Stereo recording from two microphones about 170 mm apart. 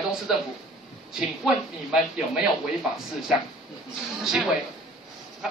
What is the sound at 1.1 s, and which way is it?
A woman's voice, 5° right (ahead or behind).